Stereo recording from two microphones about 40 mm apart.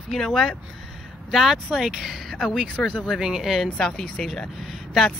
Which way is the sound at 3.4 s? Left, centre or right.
Centre.